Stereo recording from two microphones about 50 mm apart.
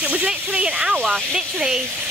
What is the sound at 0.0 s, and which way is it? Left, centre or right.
Speech, right.